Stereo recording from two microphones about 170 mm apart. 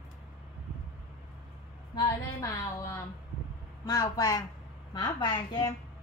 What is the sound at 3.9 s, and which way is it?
A woman's voice, 20° left (ahead or behind).